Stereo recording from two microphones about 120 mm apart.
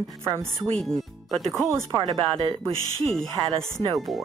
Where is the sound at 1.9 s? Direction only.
35° right (ahead or behind).